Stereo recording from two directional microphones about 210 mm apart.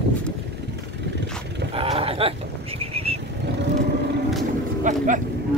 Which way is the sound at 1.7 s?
25° right (ahead or behind).